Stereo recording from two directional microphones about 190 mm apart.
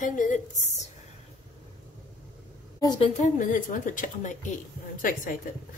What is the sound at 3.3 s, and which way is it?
A woman's voice, 45° left (ahead or behind).